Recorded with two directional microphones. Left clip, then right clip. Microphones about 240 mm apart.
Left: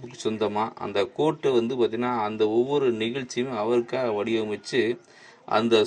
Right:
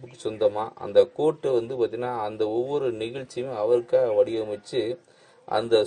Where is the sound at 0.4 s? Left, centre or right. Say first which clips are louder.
Right 4 dB; centre.